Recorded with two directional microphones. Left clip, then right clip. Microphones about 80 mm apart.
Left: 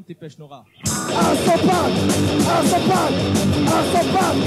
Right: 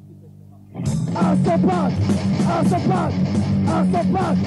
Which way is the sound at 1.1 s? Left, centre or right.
Right.